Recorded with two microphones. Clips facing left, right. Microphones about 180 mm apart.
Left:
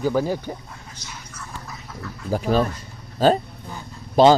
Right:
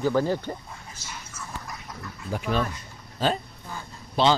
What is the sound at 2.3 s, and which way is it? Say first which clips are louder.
Speech: left 6 dB; 35° left (ahead or behind).